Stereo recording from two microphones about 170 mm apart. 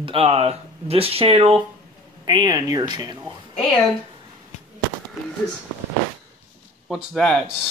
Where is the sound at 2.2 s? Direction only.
25° right (ahead or behind).